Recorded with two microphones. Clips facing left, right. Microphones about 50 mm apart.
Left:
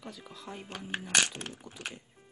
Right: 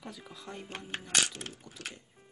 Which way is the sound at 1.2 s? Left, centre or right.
Left.